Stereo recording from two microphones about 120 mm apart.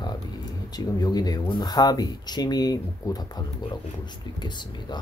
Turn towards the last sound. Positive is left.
turn(degrees=40)  # may be behind; listen again after turning